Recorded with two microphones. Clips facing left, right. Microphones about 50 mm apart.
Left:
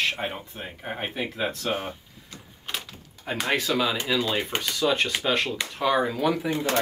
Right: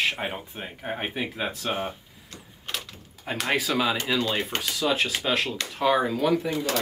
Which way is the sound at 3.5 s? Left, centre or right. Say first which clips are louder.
Even; centre.